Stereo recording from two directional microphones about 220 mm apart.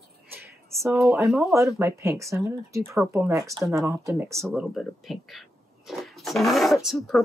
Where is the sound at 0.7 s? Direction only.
10° right (ahead or behind).